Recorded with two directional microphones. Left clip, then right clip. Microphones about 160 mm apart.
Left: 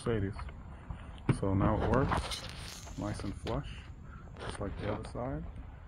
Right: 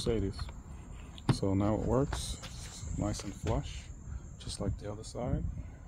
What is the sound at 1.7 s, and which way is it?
Speech, 20° right (ahead or behind).